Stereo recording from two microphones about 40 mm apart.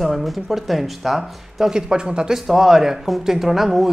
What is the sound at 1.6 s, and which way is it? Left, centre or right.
Speech, centre.